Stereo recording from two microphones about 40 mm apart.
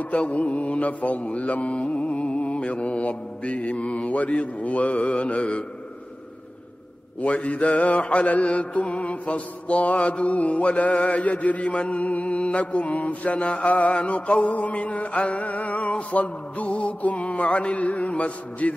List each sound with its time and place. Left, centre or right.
0.1 s mantra: left
7.2 s mantra: left